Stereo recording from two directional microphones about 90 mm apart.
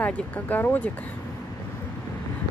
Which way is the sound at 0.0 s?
20° left (ahead or behind).